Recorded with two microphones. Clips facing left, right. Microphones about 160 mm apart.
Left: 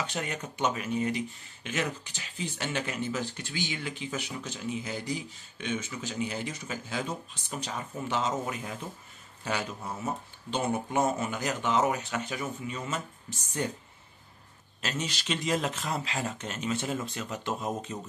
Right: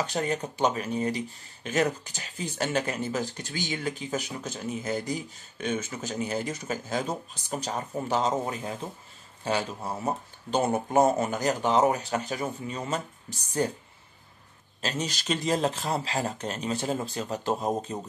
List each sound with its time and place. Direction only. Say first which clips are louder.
0.0 s speech: right 6 dB; 35° right (ahead or behind)
14.8 s speech: right 3 dB; 35° right (ahead or behind)